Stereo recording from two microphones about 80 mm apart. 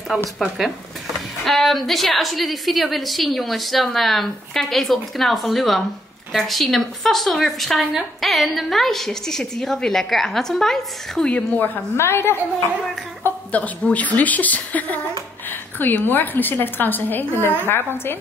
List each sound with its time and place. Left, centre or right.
0.1 s speech: centre
1.4 s a woman's voice: centre; by 12.4 s left
13.2 s a woman's voice: centre